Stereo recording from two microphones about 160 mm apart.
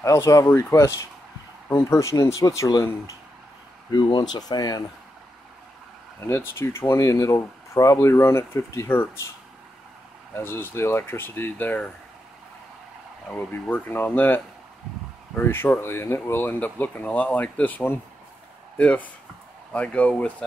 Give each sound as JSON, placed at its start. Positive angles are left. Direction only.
{"t": 0.0, "sound": "speech", "side_deg": 20}
{"t": 6.2, "sound": "speech", "side_deg": 15}
{"t": 10.3, "sound": "speech", "side_deg": 15}
{"t": 13.3, "sound": "speech", "side_deg": 10}